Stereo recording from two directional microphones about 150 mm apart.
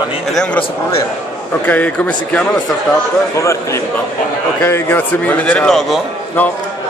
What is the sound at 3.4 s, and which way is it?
A man's voice, 20° left (ahead or behind).